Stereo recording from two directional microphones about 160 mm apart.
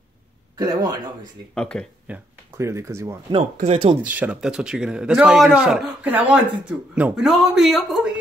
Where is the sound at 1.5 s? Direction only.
5° left (ahead or behind).